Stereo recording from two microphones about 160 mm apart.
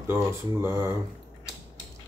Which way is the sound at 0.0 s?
15° right (ahead or behind).